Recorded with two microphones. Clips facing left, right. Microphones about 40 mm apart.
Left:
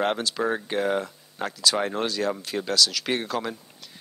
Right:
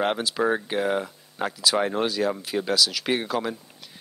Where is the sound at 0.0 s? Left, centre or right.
Centre.